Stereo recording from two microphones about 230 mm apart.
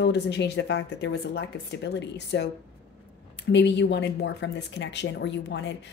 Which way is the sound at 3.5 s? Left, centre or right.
Left.